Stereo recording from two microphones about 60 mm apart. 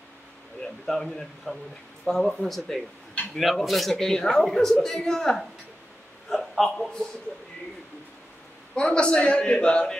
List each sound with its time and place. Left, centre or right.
0.6 s a woman's voice: centre
8.7 s a woman's voice: centre